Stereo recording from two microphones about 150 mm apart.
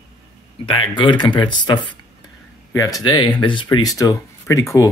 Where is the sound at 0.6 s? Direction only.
30° left (ahead or behind).